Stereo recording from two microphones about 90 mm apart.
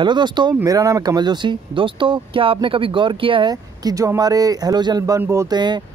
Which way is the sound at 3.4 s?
40° right (ahead or behind).